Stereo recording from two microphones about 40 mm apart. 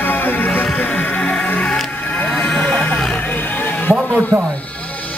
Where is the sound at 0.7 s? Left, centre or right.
Left.